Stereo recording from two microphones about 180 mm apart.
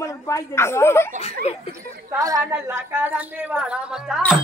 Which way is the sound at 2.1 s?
20° right (ahead or behind).